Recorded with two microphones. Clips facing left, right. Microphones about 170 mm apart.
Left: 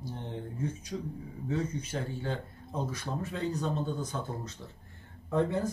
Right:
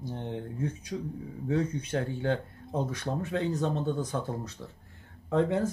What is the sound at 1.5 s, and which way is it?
Speech, 65° right (ahead or behind).